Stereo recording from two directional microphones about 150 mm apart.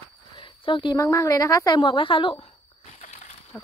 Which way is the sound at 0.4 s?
30° left (ahead or behind).